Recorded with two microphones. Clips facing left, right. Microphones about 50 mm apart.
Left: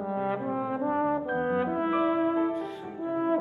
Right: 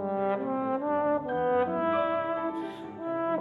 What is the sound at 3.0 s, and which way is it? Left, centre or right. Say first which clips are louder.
French horn: left 2 dB; centre.